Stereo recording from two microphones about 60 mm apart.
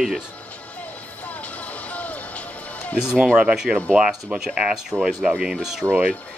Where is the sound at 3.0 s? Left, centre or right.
Centre.